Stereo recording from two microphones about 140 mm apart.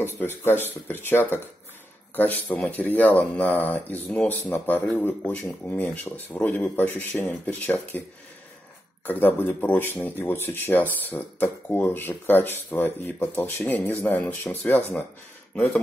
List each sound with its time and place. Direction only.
0.0 s speech: 15° left (ahead or behind)
9.0 s speech: 15° left (ahead or behind)